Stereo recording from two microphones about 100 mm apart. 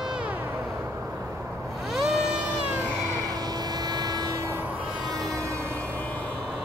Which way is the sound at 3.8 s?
45° right (ahead or behind).